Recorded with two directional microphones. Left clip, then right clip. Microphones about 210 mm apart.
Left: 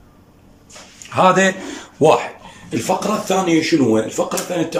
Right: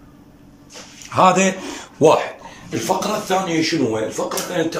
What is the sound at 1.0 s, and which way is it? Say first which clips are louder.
A man's voice: left 1 dB; centre (ahead or behind).